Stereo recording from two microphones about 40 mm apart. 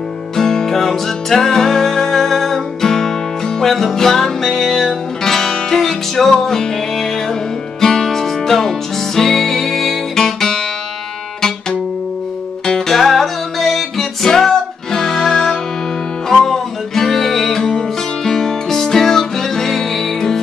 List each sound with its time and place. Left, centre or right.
0.4 s music: centre
12.6 s music: centre
12.9 s music: centre